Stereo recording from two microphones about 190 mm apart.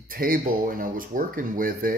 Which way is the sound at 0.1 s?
50° right (ahead or behind).